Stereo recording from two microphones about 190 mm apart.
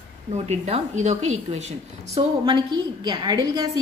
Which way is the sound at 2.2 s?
25° right (ahead or behind).